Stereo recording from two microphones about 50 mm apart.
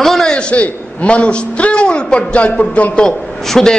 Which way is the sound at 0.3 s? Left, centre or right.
Left.